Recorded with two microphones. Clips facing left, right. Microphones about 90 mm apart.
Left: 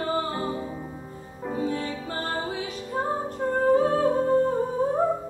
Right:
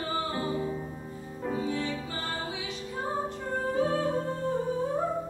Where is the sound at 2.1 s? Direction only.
45° left (ahead or behind).